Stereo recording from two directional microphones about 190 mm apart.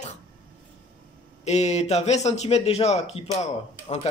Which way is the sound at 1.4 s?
35° left (ahead or behind).